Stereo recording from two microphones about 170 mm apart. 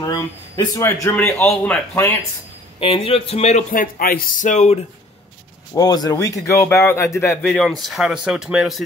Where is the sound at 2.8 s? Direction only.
30° left (ahead or behind).